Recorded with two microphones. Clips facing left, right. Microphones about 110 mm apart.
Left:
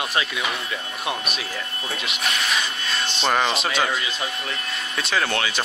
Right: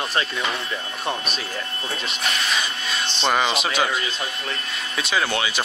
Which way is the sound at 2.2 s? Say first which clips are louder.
Even; centre (ahead or behind).